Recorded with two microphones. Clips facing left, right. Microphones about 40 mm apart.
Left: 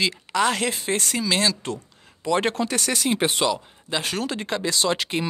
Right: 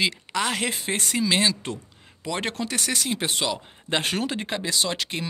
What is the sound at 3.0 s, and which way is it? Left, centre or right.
Speech, left.